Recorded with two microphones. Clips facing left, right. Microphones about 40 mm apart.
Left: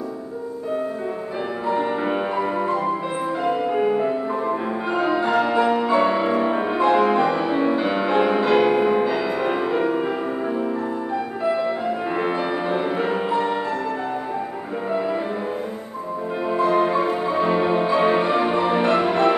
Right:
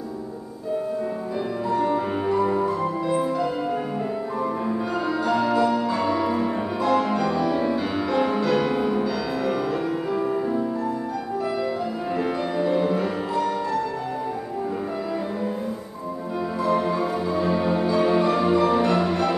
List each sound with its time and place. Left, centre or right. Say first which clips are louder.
1.7 s music: left 1 dB; left
11.4 s music: left 6 dB; left
16.5 s music: left 4 dB; left